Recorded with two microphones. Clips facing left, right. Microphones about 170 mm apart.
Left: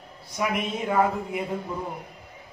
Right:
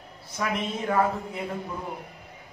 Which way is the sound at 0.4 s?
15° left (ahead or behind).